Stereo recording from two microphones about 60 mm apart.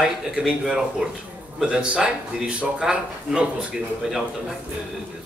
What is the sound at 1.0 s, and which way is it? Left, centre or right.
A man's voice, right.